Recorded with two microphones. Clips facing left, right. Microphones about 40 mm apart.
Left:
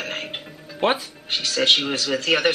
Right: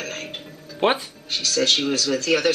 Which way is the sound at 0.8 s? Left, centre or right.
Centre.